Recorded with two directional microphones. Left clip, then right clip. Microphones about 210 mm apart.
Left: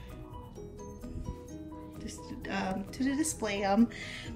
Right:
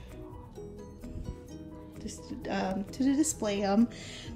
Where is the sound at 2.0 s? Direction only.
15° right (ahead or behind).